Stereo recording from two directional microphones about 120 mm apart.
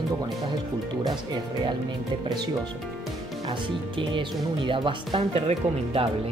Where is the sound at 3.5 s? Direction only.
45° right (ahead or behind).